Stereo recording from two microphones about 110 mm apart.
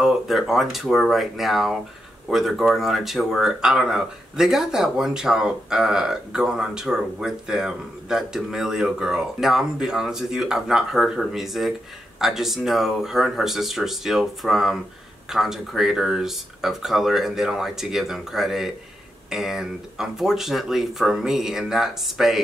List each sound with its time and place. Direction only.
0.0 s speech: 5° right (ahead or behind)